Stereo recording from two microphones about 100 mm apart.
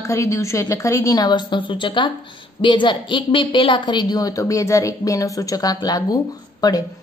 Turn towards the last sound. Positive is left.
turn(degrees=40)  # may be behind; listen again after turning